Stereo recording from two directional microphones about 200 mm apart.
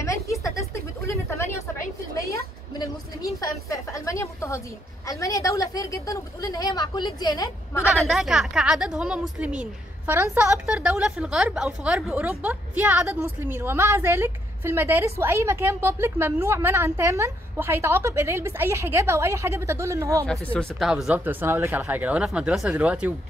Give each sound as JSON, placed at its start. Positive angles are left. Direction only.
{"t": 0.0, "sound": "a sound", "side_deg": 15}
{"t": 2.1, "sound": "a woman's voice", "side_deg": 15}
{"t": 8.1, "sound": "a woman's voice", "side_deg": 0}
{"t": 20.2, "sound": "a woman's voice", "side_deg": 5}